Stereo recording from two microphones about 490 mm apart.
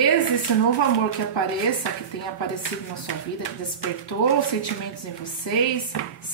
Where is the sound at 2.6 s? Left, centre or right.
Left.